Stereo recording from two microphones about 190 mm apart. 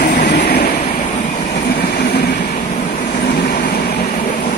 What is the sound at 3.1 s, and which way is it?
Vehicle, 55° left (ahead or behind).